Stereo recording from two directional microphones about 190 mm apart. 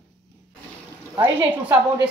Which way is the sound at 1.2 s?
10° right (ahead or behind).